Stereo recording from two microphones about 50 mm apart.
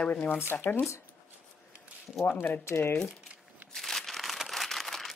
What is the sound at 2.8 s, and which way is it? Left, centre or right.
Speech, left.